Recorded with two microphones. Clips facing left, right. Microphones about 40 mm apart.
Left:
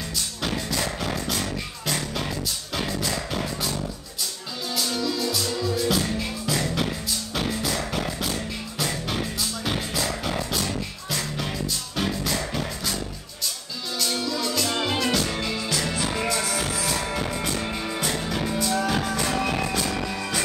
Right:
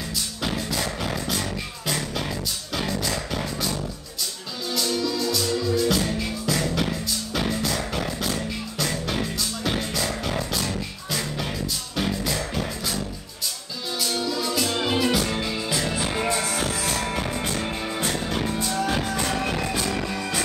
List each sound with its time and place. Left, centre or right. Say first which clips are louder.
0.4 s music: even; centre
15.7 s music: right 2 dB; centre
16.9 s music: even; centre